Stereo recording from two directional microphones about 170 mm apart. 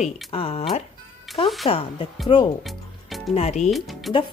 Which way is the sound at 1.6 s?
30° left (ahead or behind).